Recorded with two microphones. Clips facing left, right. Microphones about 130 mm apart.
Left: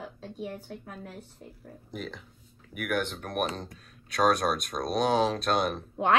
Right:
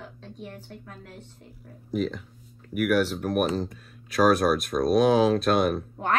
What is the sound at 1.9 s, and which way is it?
Speech, centre (ahead or behind).